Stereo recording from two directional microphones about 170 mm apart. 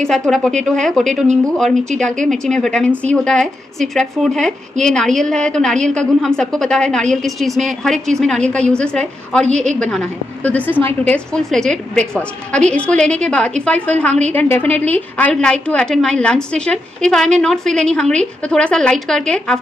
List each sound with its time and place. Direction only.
0.3 s a woman's voice: 5° left (ahead or behind)
9.5 s a woman's voice: 45° right (ahead or behind)
10.4 s a woman's voice: 10° left (ahead or behind)